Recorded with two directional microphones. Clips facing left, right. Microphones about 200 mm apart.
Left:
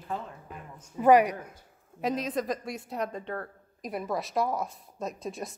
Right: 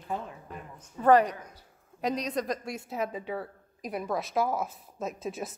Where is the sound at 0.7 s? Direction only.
10° left (ahead or behind).